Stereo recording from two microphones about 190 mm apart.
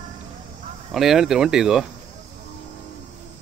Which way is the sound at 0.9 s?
Centre (ahead or behind).